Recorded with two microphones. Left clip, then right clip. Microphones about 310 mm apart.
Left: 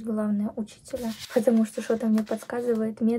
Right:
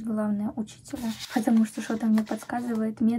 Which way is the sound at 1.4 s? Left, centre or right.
Centre.